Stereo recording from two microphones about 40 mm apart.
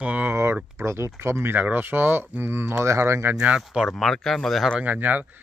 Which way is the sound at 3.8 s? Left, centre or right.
Centre.